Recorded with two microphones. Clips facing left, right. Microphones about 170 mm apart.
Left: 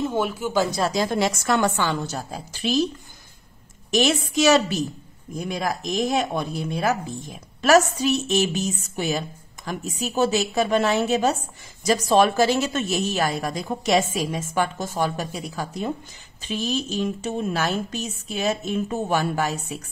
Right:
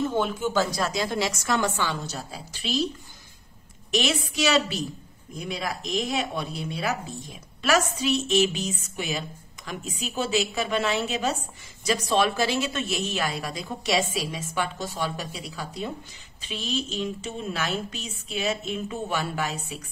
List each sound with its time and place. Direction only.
0.0 s speech: 10° left (ahead or behind)
0.7 s speech: 25° left (ahead or behind)
0.9 s a woman's voice: 45° left (ahead or behind)
3.9 s a woman's voice: 45° left (ahead or behind)